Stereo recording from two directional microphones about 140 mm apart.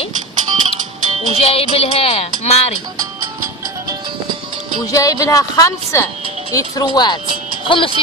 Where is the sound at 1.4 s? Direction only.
45° left (ahead or behind).